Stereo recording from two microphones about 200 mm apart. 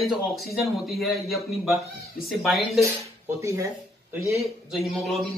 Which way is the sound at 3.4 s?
15° right (ahead or behind).